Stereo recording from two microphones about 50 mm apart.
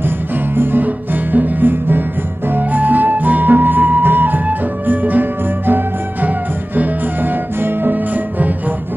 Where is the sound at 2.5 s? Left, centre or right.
Right.